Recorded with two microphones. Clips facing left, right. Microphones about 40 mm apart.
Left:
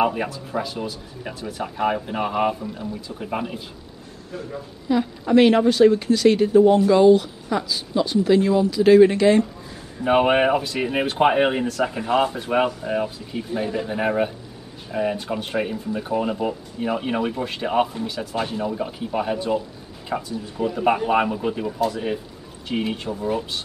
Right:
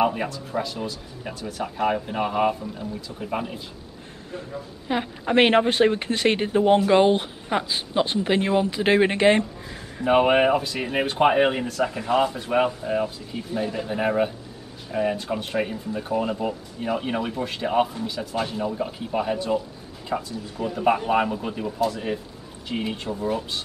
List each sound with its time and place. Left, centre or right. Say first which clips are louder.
0.0 s speech: left 1 dB; centre
4.8 s a woman's voice: left 4 dB; right
10.0 s speech: left 1 dB; centre
11.8 s speech: even; centre